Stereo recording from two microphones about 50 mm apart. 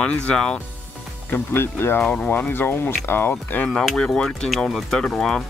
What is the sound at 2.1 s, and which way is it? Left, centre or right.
Speech, left.